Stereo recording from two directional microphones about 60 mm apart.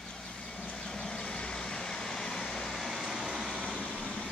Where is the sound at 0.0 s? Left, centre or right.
Centre.